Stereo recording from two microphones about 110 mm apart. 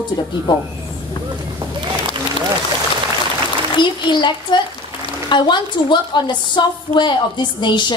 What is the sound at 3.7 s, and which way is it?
A woman's voice, 45° left (ahead or behind).